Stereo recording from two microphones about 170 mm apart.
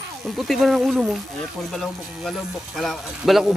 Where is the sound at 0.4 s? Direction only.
Centre (ahead or behind).